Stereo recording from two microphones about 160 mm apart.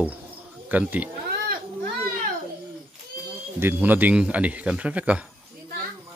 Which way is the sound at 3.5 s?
15° right (ahead or behind).